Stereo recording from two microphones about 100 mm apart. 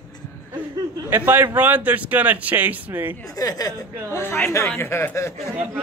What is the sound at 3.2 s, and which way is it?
Speech, 35° left (ahead or behind).